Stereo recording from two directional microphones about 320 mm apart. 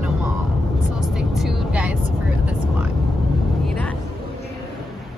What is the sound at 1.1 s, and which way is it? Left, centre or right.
Vehicle, centre.